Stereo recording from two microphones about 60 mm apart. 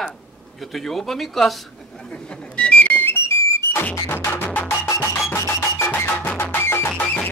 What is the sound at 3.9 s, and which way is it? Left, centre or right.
Music, left.